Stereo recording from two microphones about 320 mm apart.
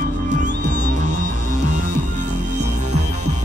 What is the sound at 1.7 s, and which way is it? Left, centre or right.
Music, right.